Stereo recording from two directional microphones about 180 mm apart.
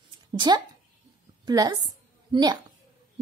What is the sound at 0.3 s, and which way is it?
A woman's voice, 25° right (ahead or behind).